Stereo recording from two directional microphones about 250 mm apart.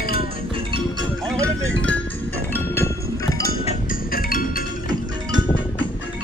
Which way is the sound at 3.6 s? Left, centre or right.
Left.